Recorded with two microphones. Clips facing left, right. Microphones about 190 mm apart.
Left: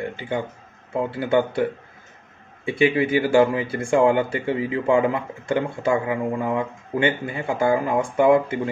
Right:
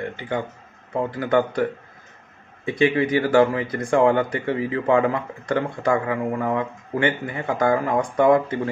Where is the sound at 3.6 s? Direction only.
30° left (ahead or behind).